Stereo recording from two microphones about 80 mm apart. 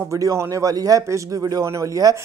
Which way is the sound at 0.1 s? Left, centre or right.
Right.